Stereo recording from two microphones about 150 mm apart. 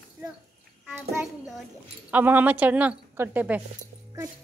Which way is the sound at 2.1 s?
10° right (ahead or behind).